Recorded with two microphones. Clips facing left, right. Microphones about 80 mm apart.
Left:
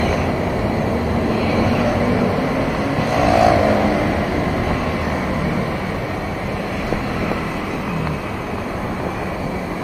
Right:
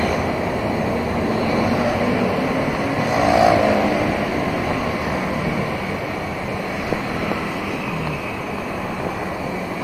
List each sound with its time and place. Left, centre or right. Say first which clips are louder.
1.9 s vehicle: left 2 dB; centre
3.1 s vehicle: left 1 dB; centre
3.5 s vehicle: left 1 dB; centre